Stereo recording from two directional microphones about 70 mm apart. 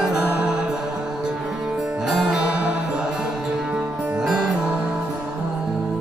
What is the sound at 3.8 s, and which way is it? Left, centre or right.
Music, right.